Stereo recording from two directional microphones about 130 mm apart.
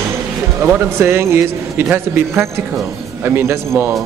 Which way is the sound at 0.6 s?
20° right (ahead or behind).